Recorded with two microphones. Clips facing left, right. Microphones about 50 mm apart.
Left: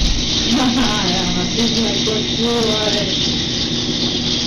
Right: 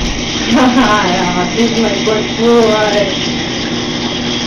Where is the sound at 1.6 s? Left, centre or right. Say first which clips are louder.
Right 6 dB; right.